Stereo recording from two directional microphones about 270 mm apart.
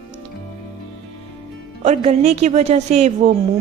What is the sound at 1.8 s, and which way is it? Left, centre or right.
Speech, right.